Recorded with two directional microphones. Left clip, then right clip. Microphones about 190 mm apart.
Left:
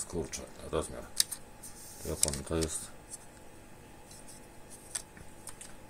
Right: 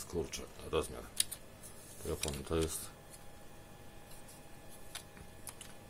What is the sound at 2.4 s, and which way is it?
Speech, 20° left (ahead or behind).